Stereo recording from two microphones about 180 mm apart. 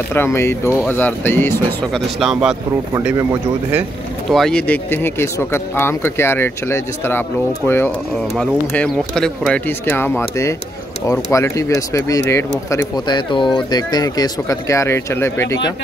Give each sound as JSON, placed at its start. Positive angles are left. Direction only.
{"t": 0.1, "sound": "speech", "side_deg": 15}
{"t": 2.0, "sound": "speech", "side_deg": 0}
{"t": 2.9, "sound": "speech", "side_deg": -15}
{"t": 4.3, "sound": "speech", "side_deg": 0}